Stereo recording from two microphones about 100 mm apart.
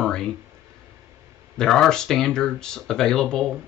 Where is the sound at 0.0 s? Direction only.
5° left (ahead or behind).